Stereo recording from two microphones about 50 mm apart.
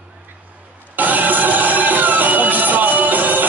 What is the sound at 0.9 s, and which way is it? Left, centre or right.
Music, right.